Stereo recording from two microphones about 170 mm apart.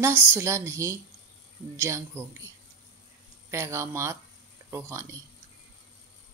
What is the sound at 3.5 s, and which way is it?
A woman's voice, 15° right (ahead or behind).